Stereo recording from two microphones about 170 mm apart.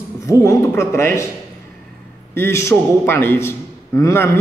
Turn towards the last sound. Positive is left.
turn(degrees=15)  # may be behind; listen again after turning